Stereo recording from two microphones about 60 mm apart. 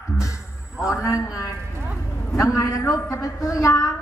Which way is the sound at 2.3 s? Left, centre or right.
Left.